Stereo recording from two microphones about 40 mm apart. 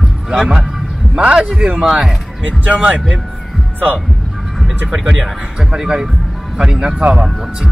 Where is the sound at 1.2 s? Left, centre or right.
Right.